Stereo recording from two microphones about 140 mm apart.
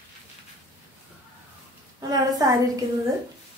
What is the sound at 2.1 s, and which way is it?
Speech, 25° right (ahead or behind).